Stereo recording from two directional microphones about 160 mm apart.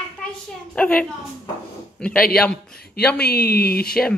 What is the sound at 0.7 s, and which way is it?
A woman's voice, 5° left (ahead or behind).